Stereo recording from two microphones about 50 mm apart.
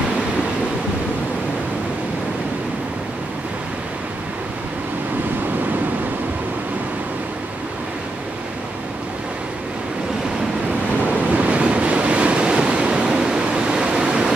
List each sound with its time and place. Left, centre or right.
11.3 s waves: right